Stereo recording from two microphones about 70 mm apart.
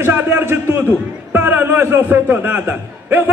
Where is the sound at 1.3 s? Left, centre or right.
Right.